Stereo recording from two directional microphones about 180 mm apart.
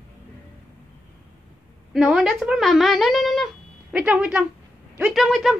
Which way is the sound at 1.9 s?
5° right (ahead or behind).